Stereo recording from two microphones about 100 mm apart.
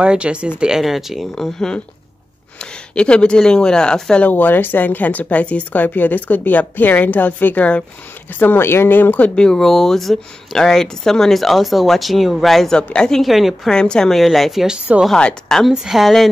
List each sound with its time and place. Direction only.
0.0 s speech: 10° right (ahead or behind); by 9.3 s 20° left (ahead or behind)
9.3 s speech: 5° left (ahead or behind)